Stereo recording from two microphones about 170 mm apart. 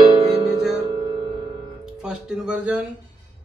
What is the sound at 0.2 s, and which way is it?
Music, 5° right (ahead or behind).